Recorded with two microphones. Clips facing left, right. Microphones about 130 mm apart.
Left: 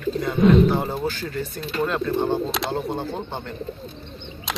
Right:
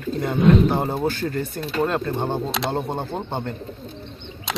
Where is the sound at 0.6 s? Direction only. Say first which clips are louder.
Right 1 dB; 25° right (ahead or behind).